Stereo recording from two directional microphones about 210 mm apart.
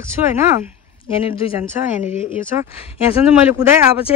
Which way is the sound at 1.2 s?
25° left (ahead or behind).